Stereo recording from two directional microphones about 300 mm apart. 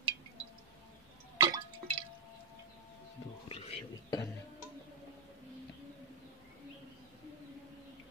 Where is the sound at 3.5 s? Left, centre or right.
Centre.